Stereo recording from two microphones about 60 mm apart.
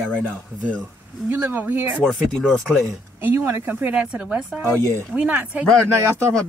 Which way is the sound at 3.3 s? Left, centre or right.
Right.